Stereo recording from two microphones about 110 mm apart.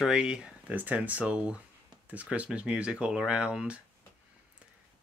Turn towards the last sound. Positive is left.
turn(degrees=-10)  # may be behind; listen again after turning